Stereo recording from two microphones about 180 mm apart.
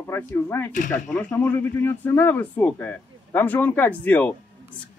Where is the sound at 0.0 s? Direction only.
15° left (ahead or behind).